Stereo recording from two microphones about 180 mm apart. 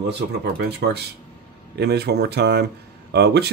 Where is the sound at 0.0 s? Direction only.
70° right (ahead or behind).